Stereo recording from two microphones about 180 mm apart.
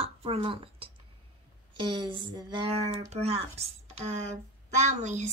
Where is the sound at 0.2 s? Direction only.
30° right (ahead or behind).